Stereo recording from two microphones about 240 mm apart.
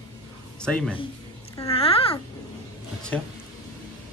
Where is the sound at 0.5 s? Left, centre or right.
Centre.